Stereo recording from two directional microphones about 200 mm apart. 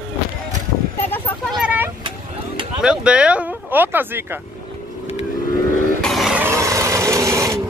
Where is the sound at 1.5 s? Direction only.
5° right (ahead or behind).